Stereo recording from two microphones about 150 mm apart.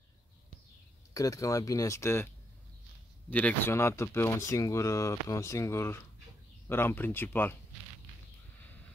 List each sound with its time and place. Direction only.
1.1 s speech: 25° left (ahead or behind)
3.3 s speech: 10° left (ahead or behind)